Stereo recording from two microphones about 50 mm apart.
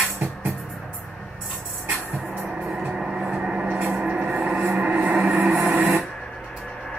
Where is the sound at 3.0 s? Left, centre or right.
Centre.